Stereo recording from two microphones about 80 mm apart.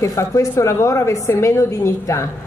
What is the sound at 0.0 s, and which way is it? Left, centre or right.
A woman's voice, left.